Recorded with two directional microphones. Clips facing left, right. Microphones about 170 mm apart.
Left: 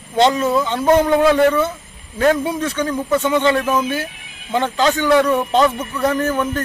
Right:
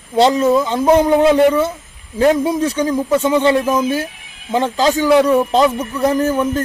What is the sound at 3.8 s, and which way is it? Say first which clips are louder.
Speech: right 4 dB; 40° right (ahead or behind).